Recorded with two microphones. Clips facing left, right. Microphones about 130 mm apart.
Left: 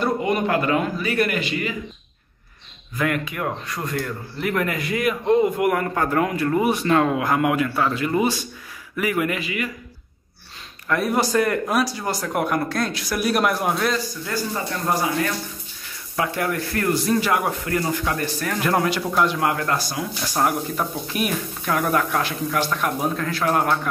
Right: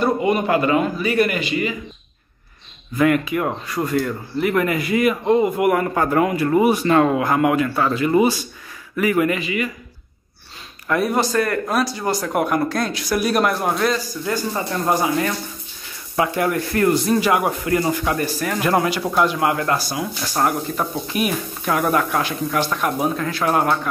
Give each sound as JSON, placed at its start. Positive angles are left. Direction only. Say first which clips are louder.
{"t": 0.0, "sound": "speech", "louder": "right 3 dB", "side_deg": -5}
{"t": 3.0, "sound": "speech", "louder": "right 6 dB", "side_deg": -5}
{"t": 10.9, "sound": "speech", "louder": "right 2 dB", "side_deg": 0}
{"t": 11.1, "sound": "speech", "louder": "right 1 dB", "side_deg": 15}
{"t": 16.2, "sound": "speech", "louder": "right 4 dB", "side_deg": -20}